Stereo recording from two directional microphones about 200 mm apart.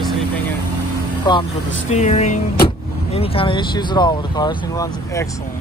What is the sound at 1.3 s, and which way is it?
Speech, 20° left (ahead or behind).